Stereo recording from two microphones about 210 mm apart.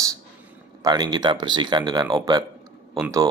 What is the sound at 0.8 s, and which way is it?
Speech, 20° right (ahead or behind).